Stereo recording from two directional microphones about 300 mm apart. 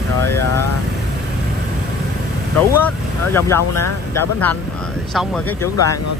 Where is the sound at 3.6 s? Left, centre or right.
Left.